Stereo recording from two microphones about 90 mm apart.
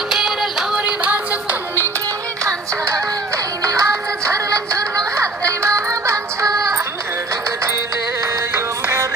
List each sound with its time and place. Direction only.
0.1 s music: 5° right (ahead or behind)
3.6 s music: 35° right (ahead or behind)
8.5 s music: 30° right (ahead or behind)